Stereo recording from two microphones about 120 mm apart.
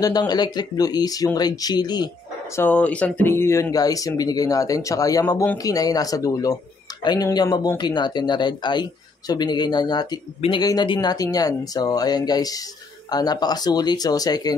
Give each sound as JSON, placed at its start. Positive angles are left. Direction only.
{"t": 0.0, "sound": "speech", "side_deg": 35}
{"t": 2.5, "sound": "speech", "side_deg": 15}